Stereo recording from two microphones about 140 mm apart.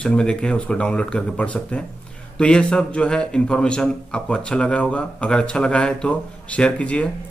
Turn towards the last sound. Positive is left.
turn(degrees=10)  # may be behind; listen again after turning